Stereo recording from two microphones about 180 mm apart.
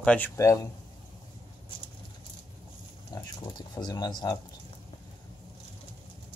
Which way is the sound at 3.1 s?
20° left (ahead or behind).